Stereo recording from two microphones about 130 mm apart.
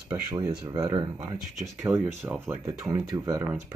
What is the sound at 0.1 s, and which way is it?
Speech, 20° right (ahead or behind).